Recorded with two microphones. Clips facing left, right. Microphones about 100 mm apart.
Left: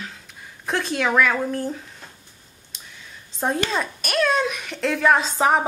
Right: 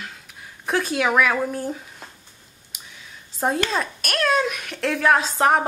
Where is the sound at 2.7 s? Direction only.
10° right (ahead or behind).